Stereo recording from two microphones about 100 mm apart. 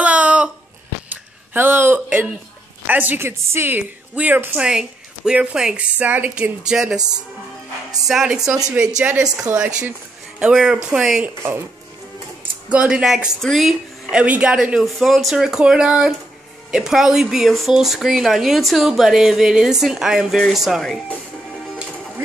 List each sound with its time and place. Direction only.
0.0 s a sound: 15° right (ahead or behind)
2.9 s a woman's voice: 20° right (ahead or behind)
8.1 s a woman's voice: 5° right (ahead or behind)
12.6 s speech: 10° right (ahead or behind)
14.1 s a woman's voice: 10° right (ahead or behind)